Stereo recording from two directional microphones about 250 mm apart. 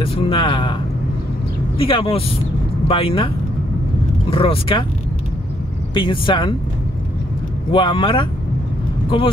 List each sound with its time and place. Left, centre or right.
0.0 s speech: left
1.8 s speech: left
4.3 s speech: left
5.9 s speech: centre
7.7 s speech: centre